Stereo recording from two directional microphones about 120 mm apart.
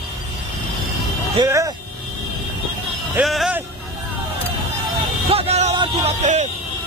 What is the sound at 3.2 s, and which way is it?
Speech, centre (ahead or behind).